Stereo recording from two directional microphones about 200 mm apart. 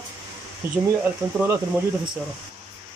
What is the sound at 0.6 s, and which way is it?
Speech, 10° right (ahead or behind).